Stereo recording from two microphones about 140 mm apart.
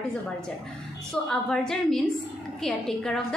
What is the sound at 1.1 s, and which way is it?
Speech, 5° left (ahead or behind).